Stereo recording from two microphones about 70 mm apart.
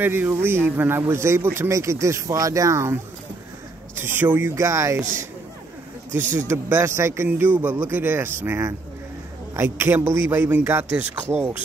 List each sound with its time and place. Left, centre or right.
0.0 s speech: right
1.0 s speech: right
3.9 s speech: right
4.6 s speech: right
6.1 s speech: right
7.2 s speech: right